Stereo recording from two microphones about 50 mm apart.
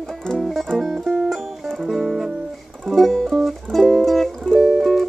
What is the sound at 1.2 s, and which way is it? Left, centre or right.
Music, centre.